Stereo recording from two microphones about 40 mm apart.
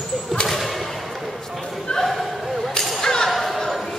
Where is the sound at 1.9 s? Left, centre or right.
Left.